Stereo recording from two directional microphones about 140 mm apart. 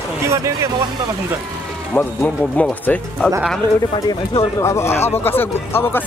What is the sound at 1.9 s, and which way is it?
Speech, 10° left (ahead or behind).